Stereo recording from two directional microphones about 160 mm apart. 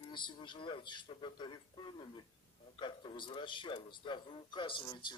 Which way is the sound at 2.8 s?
30° left (ahead or behind).